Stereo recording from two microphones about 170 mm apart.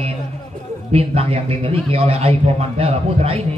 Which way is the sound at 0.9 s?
35° right (ahead or behind).